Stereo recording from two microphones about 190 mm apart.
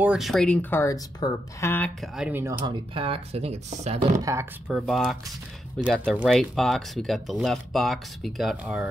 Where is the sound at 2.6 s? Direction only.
30° right (ahead or behind).